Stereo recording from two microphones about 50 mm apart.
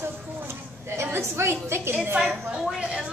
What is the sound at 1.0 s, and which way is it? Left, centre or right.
Speech, right.